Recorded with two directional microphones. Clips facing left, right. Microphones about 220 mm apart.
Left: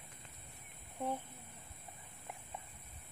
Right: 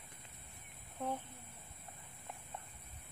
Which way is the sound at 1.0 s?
10° left (ahead or behind).